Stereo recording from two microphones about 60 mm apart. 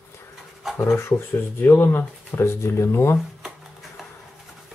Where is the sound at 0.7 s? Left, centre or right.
Left.